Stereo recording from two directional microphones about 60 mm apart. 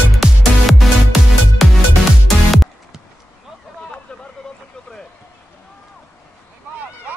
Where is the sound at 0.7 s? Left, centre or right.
Centre.